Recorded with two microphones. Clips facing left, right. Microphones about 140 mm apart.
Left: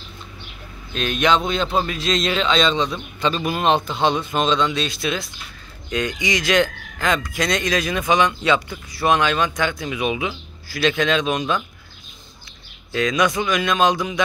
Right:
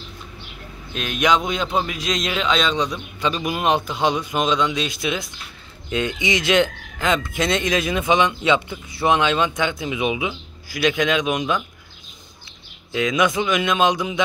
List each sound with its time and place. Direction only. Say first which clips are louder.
0.9 s speech: left 1 dB; 10° right (ahead or behind)
12.9 s speech: even; 20° right (ahead or behind)